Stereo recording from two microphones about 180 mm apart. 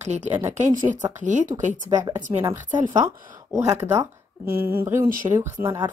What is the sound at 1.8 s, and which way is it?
Speech, 20° right (ahead or behind).